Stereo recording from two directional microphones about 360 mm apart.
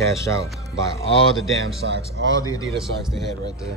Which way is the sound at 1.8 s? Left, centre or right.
Right.